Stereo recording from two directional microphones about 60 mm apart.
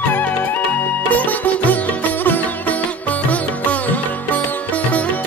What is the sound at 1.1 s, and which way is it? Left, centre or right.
Sitar, left.